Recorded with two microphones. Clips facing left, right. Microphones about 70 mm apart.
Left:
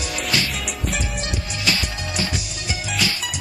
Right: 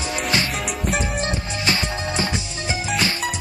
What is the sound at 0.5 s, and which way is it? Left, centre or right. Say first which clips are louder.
Music: right 3 dB; centre.